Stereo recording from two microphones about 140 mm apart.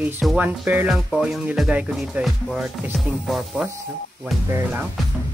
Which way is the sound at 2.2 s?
Centre (ahead or behind).